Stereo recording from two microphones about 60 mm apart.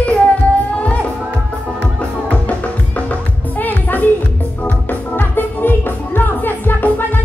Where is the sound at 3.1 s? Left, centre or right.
Left.